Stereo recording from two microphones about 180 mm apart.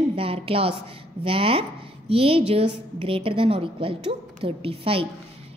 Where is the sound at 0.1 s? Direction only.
30° right (ahead or behind).